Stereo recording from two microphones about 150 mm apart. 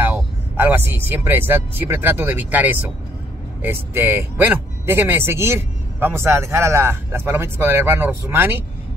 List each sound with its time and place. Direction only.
0.0 s speech: 15° right (ahead or behind)